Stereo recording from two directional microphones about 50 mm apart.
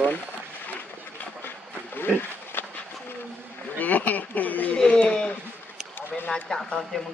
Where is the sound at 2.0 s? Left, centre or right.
Left.